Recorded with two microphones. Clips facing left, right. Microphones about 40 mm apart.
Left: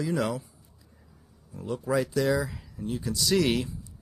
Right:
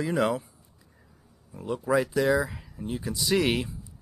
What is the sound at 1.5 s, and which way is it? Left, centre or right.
Speech, right.